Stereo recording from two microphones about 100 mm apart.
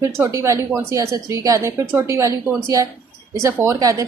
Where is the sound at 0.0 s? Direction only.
30° right (ahead or behind).